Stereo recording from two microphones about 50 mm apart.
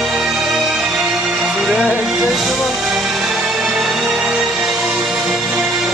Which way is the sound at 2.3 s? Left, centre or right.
Centre.